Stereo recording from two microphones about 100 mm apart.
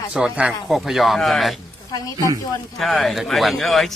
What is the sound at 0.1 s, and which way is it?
Speech, 10° right (ahead or behind).